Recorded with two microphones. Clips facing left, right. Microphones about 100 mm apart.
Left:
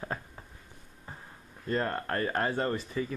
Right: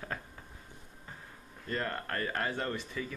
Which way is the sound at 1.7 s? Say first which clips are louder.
Left 5 dB; 25° left (ahead or behind).